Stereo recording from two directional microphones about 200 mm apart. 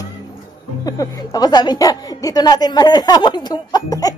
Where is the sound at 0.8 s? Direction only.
20° left (ahead or behind).